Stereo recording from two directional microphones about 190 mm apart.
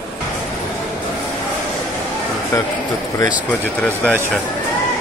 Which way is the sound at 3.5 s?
5° left (ahead or behind).